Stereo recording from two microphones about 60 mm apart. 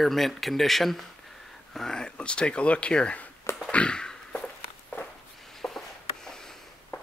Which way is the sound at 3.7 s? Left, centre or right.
Centre.